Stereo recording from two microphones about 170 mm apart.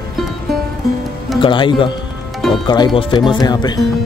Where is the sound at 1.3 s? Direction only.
30° left (ahead or behind).